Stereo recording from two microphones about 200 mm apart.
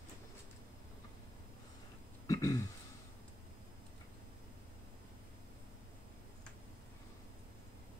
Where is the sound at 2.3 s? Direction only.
15° left (ahead or behind).